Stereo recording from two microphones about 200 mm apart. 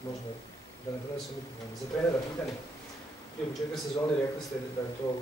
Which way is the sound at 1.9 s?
5° left (ahead or behind).